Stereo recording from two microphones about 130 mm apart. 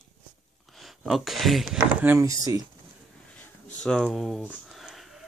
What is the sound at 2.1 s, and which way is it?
Speech, 25° right (ahead or behind).